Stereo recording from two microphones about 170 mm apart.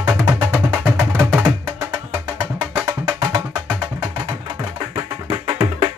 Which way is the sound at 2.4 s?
20° right (ahead or behind).